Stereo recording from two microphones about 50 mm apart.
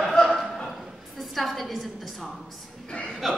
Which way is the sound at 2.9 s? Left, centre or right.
Centre.